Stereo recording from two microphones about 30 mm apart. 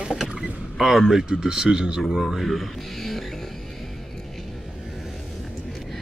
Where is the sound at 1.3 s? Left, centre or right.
Right.